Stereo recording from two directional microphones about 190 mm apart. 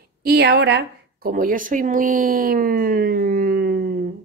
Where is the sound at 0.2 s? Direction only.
55° right (ahead or behind).